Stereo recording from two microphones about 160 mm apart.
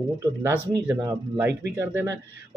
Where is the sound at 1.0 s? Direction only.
15° right (ahead or behind).